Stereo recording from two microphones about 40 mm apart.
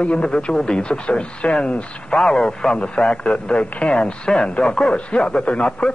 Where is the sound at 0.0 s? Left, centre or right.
Left.